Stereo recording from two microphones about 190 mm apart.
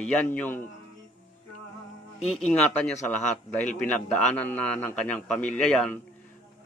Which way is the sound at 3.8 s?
5° left (ahead or behind).